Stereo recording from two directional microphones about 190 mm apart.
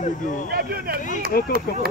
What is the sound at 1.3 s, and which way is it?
Speech, 55° left (ahead or behind).